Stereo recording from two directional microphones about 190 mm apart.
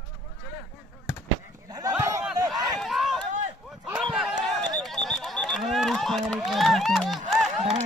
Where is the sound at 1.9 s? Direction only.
15° right (ahead or behind).